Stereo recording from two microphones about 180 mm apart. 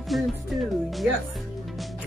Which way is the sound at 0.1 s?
Centre (ahead or behind).